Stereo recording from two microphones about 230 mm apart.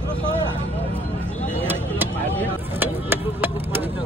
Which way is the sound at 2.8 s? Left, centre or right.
Centre.